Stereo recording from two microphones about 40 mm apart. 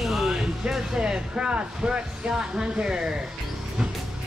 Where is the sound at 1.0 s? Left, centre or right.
Right.